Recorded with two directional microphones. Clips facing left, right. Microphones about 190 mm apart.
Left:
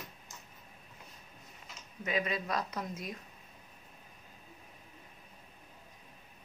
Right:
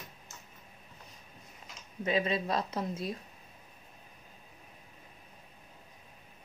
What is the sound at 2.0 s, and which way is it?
Speech, 30° right (ahead or behind).